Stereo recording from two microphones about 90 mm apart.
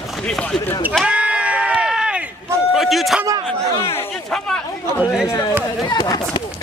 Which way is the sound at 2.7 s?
Centre (ahead or behind).